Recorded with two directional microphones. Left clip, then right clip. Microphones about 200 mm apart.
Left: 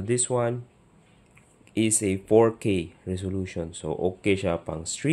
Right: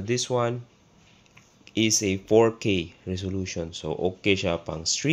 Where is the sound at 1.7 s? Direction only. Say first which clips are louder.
Right 2 dB; 5° left (ahead or behind).